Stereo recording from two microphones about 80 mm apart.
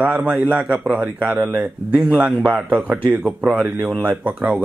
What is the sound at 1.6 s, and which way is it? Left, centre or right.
A man's voice, centre.